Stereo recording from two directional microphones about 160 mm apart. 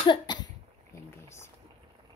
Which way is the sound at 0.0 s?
30° left (ahead or behind).